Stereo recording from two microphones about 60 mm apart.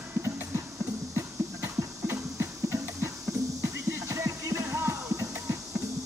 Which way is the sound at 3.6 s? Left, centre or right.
Right.